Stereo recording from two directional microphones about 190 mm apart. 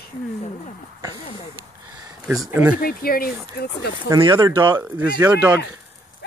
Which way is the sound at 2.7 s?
50° left (ahead or behind).